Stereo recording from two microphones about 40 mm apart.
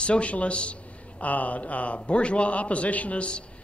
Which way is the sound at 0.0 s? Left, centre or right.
Left.